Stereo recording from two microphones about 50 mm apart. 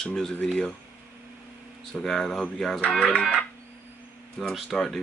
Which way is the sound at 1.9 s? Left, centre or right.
Centre.